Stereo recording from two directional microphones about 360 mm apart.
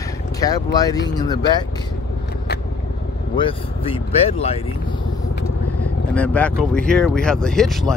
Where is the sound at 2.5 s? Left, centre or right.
Left.